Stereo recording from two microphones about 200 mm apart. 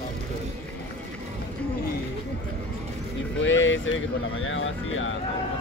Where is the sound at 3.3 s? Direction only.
70° left (ahead or behind).